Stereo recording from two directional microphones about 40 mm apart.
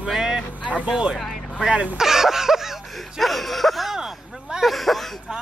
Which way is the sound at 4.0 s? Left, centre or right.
Centre.